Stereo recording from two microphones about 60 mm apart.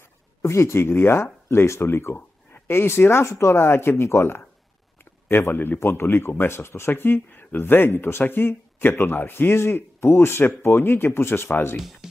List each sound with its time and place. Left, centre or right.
0.4 s speech: left
5.3 s speech: left
11.8 s speech: centre